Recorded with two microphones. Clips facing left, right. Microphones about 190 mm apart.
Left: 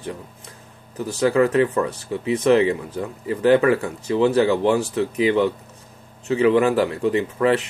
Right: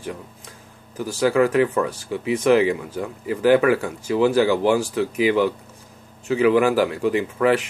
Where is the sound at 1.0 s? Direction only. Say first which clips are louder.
Even; 25° left (ahead or behind).